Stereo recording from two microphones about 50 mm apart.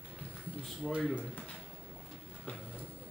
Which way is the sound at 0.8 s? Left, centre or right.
Centre.